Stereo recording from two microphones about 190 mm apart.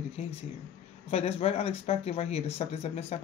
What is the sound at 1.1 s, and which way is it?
Speech, 30° left (ahead or behind).